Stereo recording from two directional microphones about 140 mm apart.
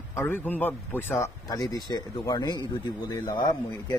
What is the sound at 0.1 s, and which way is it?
Speech, 15° left (ahead or behind).